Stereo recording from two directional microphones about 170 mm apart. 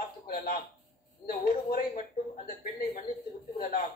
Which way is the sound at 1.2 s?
60° left (ahead or behind).